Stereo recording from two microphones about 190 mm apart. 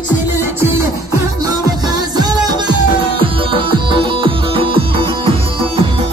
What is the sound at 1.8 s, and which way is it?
Music, 20° right (ahead or behind).